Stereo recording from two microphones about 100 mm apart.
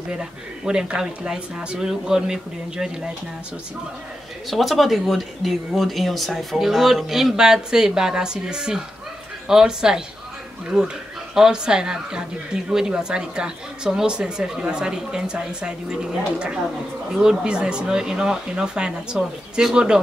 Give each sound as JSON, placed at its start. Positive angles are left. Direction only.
{"t": 0.1, "sound": "speech", "side_deg": -10}
{"t": 4.5, "sound": "speech", "side_deg": 0}